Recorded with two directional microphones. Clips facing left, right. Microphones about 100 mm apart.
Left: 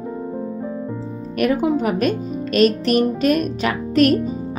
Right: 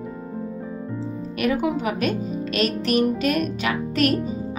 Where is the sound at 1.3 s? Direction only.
45° left (ahead or behind).